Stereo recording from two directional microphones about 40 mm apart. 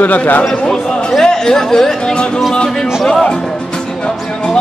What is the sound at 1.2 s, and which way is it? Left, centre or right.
Speech, centre.